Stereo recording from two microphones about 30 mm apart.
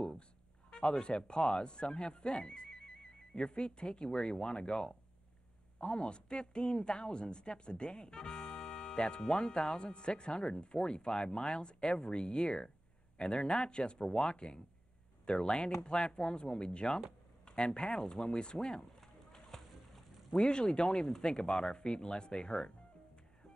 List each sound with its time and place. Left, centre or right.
0.7 s speech: left
19.5 s a sound: centre
20.3 s speech: left
20.9 s speech: centre
21.2 s speech: left